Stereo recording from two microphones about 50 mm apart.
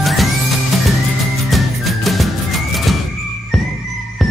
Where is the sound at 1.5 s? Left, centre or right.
Centre.